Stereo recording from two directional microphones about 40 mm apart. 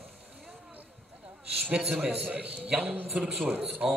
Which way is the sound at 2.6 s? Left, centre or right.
Right.